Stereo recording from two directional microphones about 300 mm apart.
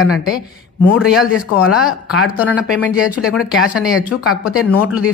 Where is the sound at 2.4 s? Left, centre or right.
Centre.